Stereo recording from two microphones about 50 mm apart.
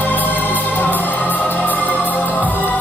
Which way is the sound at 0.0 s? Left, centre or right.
Left.